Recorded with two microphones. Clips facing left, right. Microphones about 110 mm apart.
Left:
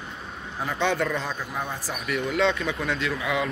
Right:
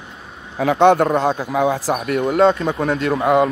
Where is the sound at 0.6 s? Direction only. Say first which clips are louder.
Right 12 dB; 60° right (ahead or behind); by 2.0 s 85° right.